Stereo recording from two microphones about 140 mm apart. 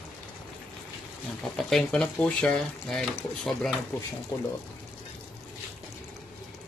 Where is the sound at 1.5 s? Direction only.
5° left (ahead or behind).